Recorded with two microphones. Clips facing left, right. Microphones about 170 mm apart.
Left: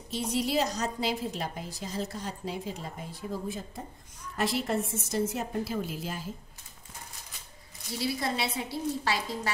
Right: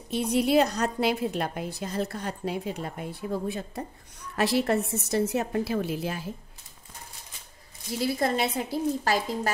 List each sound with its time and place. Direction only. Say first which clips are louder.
0.1 s a woman's voice: right 6 dB; 60° right (ahead or behind)
8.0 s a woman's voice: right 5 dB; 50° right (ahead or behind)